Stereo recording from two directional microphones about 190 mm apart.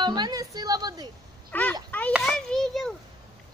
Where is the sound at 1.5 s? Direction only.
10° left (ahead or behind).